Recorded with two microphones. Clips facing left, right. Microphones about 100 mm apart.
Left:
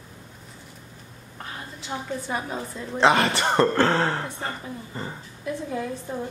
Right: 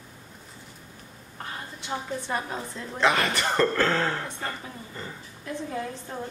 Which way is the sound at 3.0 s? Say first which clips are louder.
Left 4 dB; 30° left (ahead or behind).